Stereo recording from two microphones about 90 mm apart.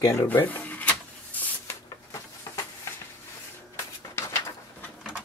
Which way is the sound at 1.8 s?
35° left (ahead or behind).